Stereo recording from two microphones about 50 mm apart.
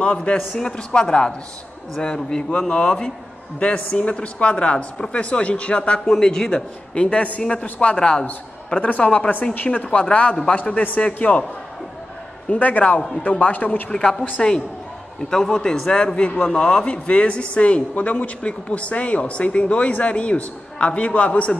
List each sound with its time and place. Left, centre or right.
0.0 s a man's voice: centre
5.9 s a man's voice: centre
6.5 s a man's voice: left
12.4 s a man's voice: left
13.8 s a man's voice: centre
15.2 s a man's voice: centre